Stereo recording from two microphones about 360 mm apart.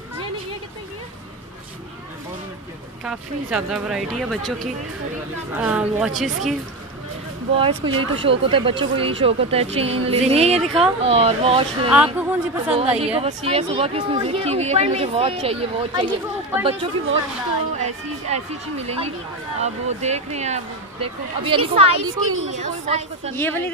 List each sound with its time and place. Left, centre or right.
3.0 s speech: centre
7.5 s speech: centre
10.6 s speech: centre
11.1 s speech: centre
11.9 s speech: centre
12.7 s speech: centre
23.3 s speech: centre